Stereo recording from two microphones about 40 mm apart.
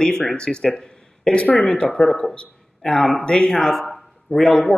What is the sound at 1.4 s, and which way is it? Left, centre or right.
Speech, left.